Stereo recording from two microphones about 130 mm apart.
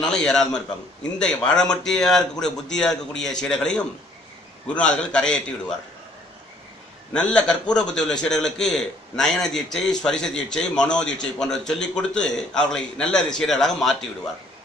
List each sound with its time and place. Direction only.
0.0 s a man's voice: 5° left (ahead or behind)
7.2 s a man's voice: 10° left (ahead or behind)